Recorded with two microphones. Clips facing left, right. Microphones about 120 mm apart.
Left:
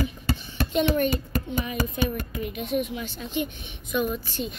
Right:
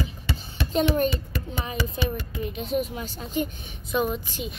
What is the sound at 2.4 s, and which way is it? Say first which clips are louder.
A woman's voice: right 1 dB; 30° right (ahead or behind).